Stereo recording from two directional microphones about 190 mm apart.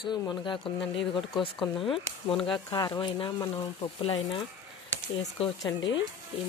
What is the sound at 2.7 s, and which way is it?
Speech, 25° left (ahead or behind).